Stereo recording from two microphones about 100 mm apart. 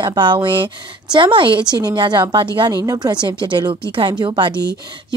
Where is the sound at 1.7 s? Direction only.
45° right (ahead or behind).